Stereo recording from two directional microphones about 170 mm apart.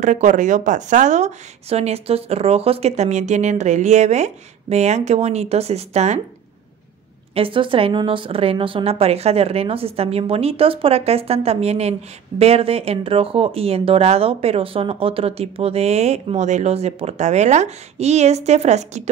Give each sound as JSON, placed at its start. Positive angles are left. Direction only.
{"t": 0.0, "sound": "speech", "side_deg": -45}
{"t": 7.3, "sound": "speech", "side_deg": -30}